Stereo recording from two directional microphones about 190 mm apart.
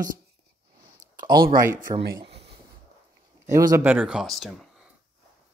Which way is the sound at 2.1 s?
30° right (ahead or behind).